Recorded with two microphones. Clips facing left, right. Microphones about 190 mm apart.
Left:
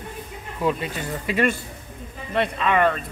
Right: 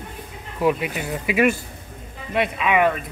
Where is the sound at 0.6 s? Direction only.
15° right (ahead or behind).